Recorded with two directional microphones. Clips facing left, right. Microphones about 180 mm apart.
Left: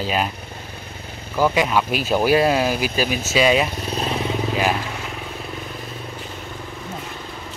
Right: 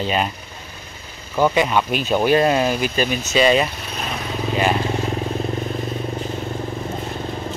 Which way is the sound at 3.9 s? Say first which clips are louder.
Left 4 dB; 30° left (ahead or behind).